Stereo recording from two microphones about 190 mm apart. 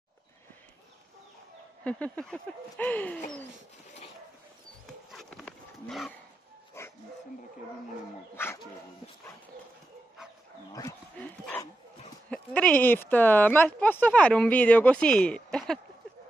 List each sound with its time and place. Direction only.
1.9 s speech: 5° left (ahead or behind)
5.1 s a sound: 5° left (ahead or behind)
6.8 s dog: 15° left (ahead or behind)
10.7 s speech: 20° left (ahead or behind)
11.1 s speech: 5° left (ahead or behind)